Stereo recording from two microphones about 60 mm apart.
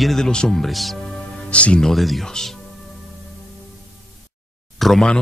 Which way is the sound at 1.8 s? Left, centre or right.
Centre.